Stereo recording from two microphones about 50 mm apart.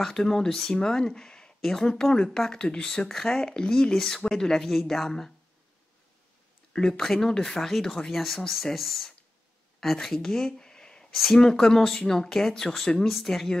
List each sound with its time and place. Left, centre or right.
0.0 s speech: centre
6.7 s speech: centre